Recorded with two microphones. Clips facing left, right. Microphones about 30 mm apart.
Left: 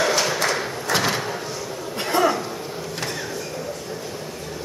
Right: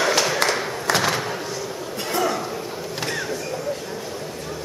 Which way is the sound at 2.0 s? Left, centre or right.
Centre.